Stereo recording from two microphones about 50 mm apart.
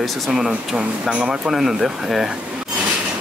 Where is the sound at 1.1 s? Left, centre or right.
Right.